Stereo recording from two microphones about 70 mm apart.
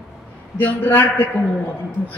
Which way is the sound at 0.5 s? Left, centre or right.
Left.